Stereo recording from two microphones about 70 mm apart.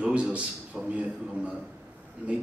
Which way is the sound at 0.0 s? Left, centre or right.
Centre.